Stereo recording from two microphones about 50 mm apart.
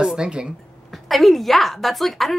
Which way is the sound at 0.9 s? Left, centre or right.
Centre.